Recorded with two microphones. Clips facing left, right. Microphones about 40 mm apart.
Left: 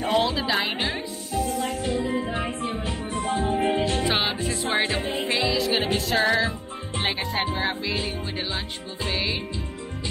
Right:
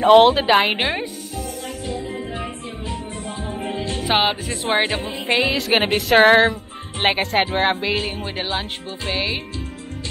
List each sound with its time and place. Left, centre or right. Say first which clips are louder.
0.0 s speech: right 11 dB; right
2.0 s music: left 2 dB; left
4.1 s music: right 5 dB; right
5.2 s speech: right 6 dB; right
6.1 s music: right 11 dB; right